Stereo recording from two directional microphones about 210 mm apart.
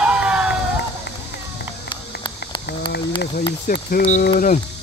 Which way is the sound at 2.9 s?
50° left (ahead or behind).